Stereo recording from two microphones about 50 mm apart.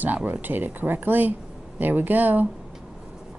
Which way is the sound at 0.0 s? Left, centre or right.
Right.